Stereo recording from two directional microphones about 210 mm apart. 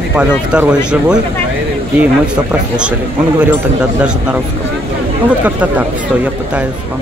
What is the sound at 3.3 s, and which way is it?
Speech, 5° right (ahead or behind).